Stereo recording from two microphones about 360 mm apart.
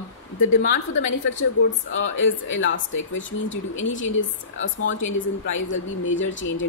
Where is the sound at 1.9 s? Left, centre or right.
Left.